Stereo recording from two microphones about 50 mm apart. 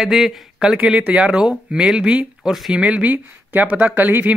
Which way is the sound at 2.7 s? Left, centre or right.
Right.